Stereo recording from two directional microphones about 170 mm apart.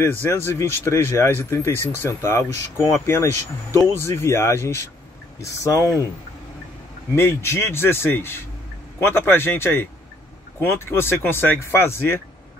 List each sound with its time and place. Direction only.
0.0 s speech: 15° left (ahead or behind)
7.2 s speech: 15° left (ahead or behind)